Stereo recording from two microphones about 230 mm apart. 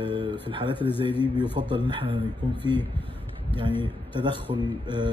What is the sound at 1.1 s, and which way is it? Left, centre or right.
Speech, centre.